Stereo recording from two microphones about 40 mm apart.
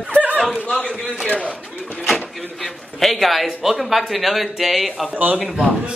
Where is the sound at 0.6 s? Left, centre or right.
Left.